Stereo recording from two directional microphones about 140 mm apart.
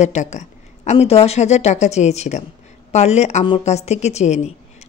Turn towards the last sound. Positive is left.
turn(degrees=55)  # may be behind; listen again after turning